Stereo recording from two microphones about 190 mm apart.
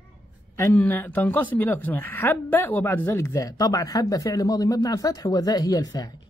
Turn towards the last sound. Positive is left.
turn(degrees=20)  # may be behind; listen again after turning